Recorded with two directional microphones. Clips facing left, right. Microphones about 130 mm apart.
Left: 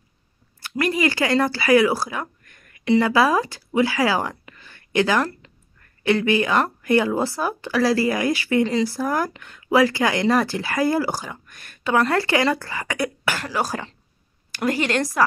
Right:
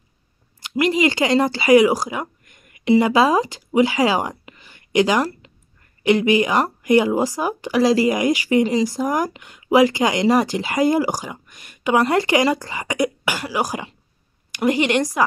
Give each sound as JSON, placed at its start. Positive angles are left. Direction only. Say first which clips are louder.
{"t": 0.6, "sound": "speech", "louder": "right 4 dB", "side_deg": -15}